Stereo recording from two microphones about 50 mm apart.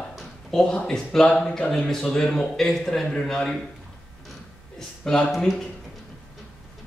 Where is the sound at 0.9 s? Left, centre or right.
Centre.